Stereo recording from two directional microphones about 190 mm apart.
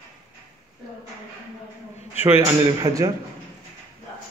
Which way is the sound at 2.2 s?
15° right (ahead or behind).